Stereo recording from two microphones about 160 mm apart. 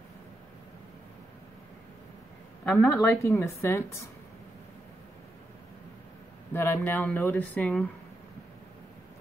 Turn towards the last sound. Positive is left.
turn(degrees=5)  # may be behind; listen again after turning